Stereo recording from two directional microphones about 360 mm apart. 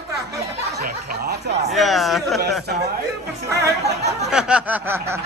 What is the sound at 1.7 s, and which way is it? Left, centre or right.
Snicker, centre.